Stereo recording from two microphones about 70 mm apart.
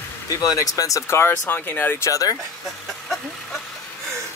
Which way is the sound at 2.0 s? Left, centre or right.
Left.